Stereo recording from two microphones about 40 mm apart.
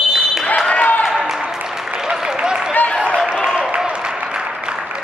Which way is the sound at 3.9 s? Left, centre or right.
Right.